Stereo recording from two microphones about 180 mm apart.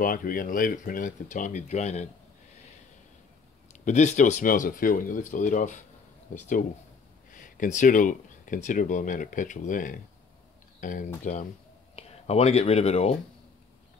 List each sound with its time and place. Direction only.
0.0 s speech: 50° left (ahead or behind)
3.8 s speech: 40° left (ahead or behind)
7.3 s speech: 45° left (ahead or behind)
11.9 s speech: 35° left (ahead or behind)